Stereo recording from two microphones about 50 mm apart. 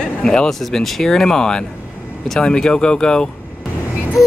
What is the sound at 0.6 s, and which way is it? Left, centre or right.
Speech, centre.